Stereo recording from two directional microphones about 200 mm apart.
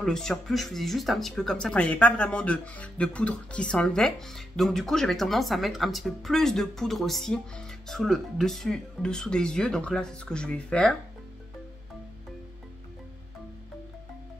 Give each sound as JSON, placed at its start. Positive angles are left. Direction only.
{"t": 0.0, "sound": "speech", "side_deg": 0}